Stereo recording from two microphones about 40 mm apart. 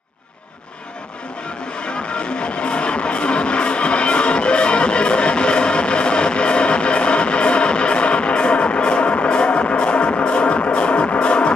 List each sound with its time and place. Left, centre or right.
1.8 s music: left